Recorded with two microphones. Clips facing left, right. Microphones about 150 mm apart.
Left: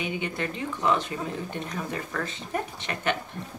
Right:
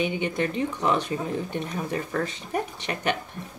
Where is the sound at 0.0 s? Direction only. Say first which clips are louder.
Right 5 dB; 20° right (ahead or behind).